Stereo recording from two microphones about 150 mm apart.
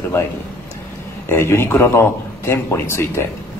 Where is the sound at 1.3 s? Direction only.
15° left (ahead or behind).